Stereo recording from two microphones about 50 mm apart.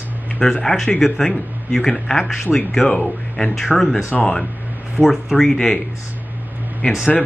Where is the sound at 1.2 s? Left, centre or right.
Centre.